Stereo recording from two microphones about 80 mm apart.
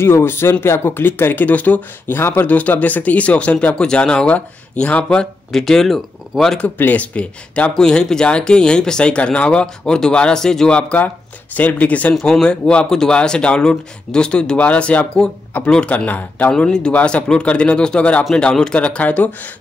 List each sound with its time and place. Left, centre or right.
0.0 s speech: left
5.2 s speech: centre
6.6 s speech: centre
12.2 s speech: centre